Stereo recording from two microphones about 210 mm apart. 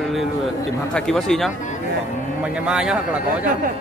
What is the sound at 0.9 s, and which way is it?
A man's voice, 5° left (ahead or behind).